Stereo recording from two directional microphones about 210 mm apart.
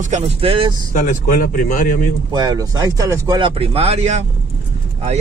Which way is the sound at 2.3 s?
20° right (ahead or behind).